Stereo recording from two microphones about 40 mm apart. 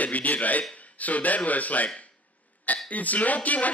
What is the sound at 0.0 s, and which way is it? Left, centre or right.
Speech, left.